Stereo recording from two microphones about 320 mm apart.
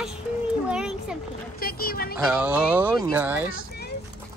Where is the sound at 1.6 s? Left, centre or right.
Left.